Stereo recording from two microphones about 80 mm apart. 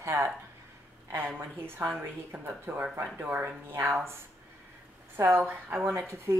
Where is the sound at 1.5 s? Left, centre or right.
Right.